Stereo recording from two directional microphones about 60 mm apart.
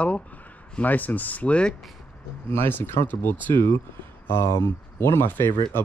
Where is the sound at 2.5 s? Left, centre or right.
Left.